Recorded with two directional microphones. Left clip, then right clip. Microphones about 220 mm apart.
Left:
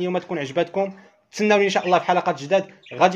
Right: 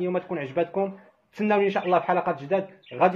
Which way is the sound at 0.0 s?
40° left (ahead or behind).